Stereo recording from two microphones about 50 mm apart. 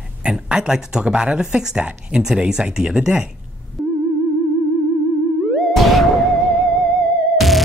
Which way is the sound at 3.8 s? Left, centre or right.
Centre.